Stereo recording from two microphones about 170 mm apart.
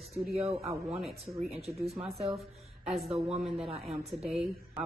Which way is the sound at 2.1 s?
35° right (ahead or behind).